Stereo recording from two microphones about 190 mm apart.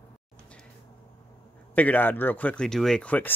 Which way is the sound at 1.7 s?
10° left (ahead or behind).